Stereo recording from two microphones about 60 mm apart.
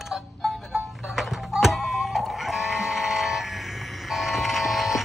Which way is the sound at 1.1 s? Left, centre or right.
Centre.